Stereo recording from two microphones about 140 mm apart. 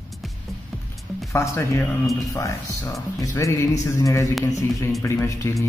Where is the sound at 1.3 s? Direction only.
20° left (ahead or behind).